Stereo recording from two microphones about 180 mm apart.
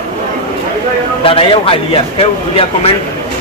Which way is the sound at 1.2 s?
30° left (ahead or behind).